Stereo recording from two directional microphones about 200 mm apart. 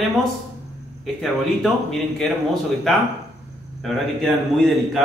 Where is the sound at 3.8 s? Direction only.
Centre (ahead or behind).